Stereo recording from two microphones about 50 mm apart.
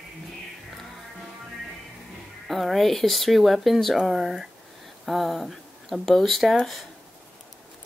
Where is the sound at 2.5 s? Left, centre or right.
Centre.